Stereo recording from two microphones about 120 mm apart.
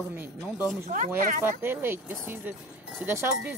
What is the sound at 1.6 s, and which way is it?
Speech, 15° right (ahead or behind).